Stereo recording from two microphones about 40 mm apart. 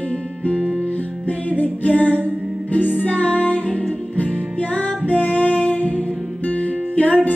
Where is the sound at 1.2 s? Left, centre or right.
Left.